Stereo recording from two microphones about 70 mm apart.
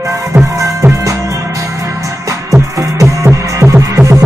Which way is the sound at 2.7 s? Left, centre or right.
Right.